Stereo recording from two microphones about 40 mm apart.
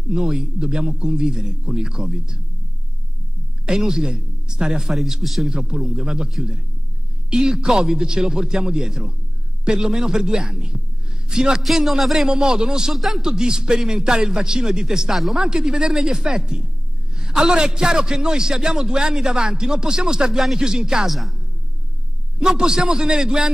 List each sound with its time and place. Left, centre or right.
0.1 s a man's voice: centre
3.6 s a man's voice: centre
4.9 s speech: centre
5.5 s a man's voice: centre
5.8 s a man's voice: centre
6.0 s a man's voice: centre
11.6 s speech: centre
12.3 s a man's voice: centre
12.9 s speech: centre
13.3 s a man's voice: centre
21.1 s speech: centre
22.4 s a man's voice: centre